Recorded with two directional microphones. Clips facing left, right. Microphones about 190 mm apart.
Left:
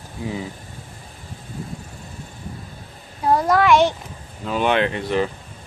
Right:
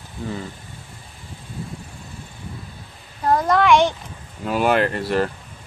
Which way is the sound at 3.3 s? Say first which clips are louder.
Even; 5° left (ahead or behind).